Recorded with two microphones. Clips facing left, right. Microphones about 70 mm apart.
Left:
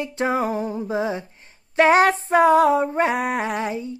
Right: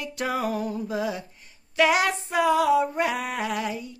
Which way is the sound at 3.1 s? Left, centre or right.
Left.